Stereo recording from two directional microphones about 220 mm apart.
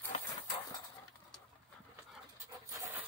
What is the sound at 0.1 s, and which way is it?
Clip-clop, 30° left (ahead or behind).